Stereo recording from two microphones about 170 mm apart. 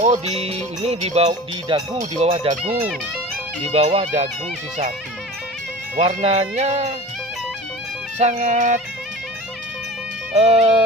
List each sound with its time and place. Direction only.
0.0 s speech: 40° right (ahead or behind)
3.7 s speech: 35° right (ahead or behind)
5.9 s speech: 35° right (ahead or behind)
8.2 s music: 40° right (ahead or behind)
10.3 s speech: 35° right (ahead or behind)